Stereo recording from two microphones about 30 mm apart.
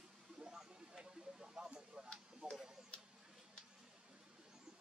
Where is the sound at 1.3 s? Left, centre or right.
Right.